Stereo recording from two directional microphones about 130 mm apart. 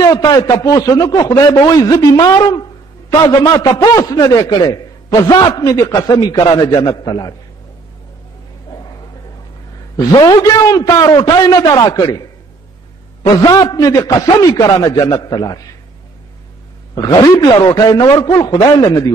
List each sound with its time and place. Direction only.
0.0 s speech: 25° left (ahead or behind)
10.1 s speech: 30° left (ahead or behind)
16.9 s a man's voice: 30° left (ahead or behind)